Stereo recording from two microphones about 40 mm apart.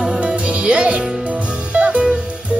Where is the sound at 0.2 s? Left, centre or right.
Right.